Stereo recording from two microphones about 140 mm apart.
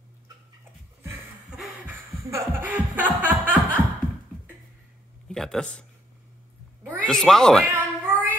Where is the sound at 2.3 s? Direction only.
15° right (ahead or behind).